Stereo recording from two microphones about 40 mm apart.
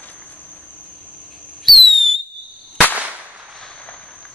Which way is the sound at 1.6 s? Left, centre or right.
Centre.